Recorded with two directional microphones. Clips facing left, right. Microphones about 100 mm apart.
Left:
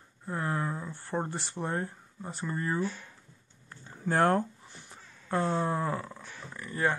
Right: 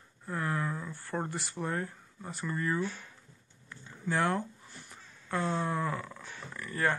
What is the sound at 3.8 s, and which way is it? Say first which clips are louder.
Speech: left 5 dB; 45° left (ahead or behind).